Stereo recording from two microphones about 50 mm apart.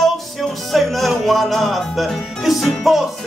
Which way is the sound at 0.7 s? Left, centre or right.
Centre.